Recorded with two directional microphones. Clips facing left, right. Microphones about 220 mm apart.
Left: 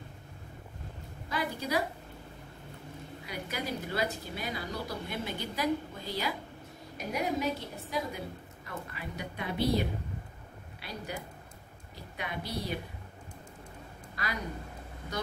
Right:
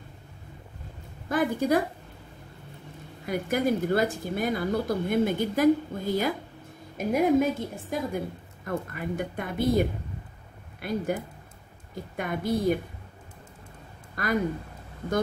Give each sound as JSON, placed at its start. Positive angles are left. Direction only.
{"t": 1.3, "sound": "a woman's voice", "side_deg": -50}
{"t": 3.3, "sound": "a woman's voice", "side_deg": -50}
{"t": 14.1, "sound": "speech", "side_deg": -50}